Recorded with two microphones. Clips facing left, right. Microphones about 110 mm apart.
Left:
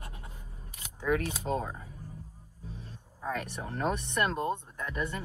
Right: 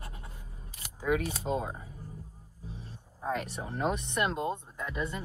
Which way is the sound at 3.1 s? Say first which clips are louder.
Right 2 dB; 20° right (ahead or behind).